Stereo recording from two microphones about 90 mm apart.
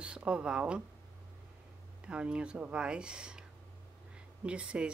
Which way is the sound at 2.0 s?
10° right (ahead or behind).